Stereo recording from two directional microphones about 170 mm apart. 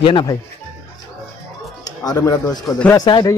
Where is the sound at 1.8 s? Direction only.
20° left (ahead or behind).